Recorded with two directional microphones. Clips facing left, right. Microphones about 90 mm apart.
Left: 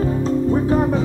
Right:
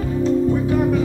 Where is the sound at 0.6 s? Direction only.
35° left (ahead or behind).